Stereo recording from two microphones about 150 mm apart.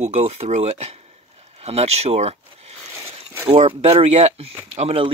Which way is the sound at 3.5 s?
45° right (ahead or behind).